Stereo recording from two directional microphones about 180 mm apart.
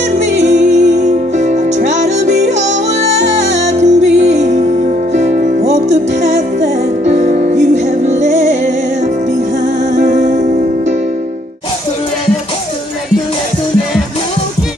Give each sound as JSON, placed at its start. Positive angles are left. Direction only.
{"t": 0.4, "sound": "music", "side_deg": -40}
{"t": 9.9, "sound": "music", "side_deg": -45}